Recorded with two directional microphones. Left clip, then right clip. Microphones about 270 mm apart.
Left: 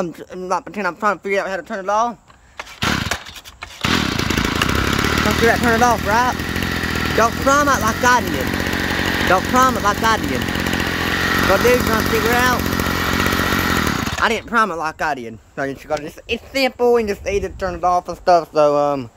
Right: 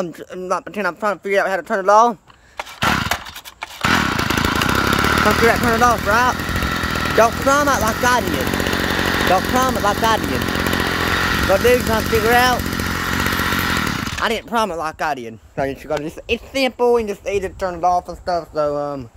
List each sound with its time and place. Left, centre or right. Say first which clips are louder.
0.0 s speech: even; centre
3.8 s vehicle: right 2 dB; centre
8.3 s engine: right 1 dB; right
9.6 s speech: left 2 dB; centre
10.2 s chainsaw: right 1 dB; right
11.4 s speech: even; centre